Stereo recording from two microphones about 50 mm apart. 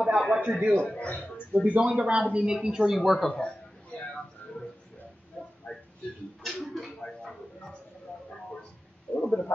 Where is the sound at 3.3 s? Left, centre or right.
Centre.